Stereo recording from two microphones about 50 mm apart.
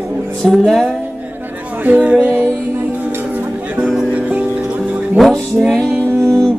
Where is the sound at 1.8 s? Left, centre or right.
Right.